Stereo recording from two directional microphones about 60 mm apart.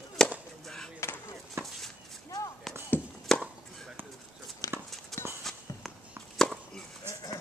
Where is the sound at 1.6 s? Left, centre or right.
Right.